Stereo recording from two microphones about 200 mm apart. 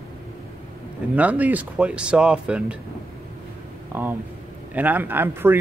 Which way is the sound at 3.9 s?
10° right (ahead or behind).